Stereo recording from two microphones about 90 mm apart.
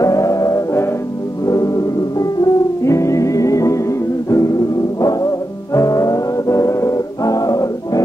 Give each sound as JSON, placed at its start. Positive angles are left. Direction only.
{"t": 0.0, "sound": "music", "side_deg": 40}